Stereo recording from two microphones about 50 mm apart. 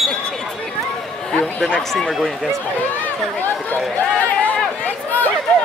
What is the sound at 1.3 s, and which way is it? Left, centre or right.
Speech, centre.